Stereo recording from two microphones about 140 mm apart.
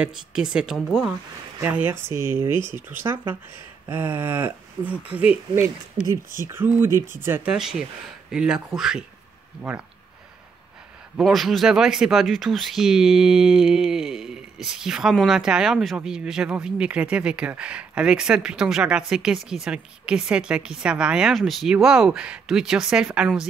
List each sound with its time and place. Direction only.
0.0 s speech: 5° right (ahead or behind)
1.6 s speech: 15° right (ahead or behind)
7.5 s speech: 5° right (ahead or behind)
11.1 s speech: centre (ahead or behind)